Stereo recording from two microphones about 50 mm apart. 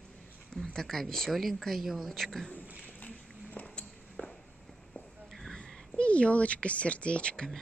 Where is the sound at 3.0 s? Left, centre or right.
Left.